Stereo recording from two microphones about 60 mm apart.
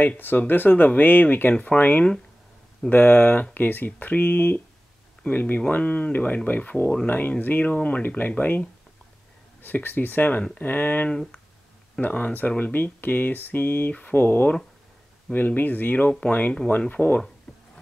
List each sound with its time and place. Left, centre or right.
0.0 s speech: left
1.5 s speech: left
11.1 s speech: centre
17.5 s a sound: centre